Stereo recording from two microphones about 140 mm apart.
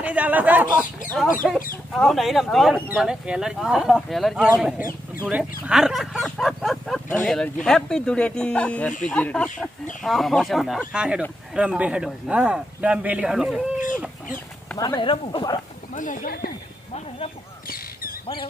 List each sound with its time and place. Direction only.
0.0 s a man's voice: 10° right (ahead or behind)
1.0 s a man's voice: 10° left (ahead or behind)
14.8 s speech: 30° left (ahead or behind)
15.9 s speech: 70° left (ahead or behind); by 16.5 s 90° left
17.6 s a sound: 90° left